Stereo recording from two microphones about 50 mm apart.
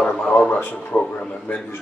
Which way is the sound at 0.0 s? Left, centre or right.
Centre.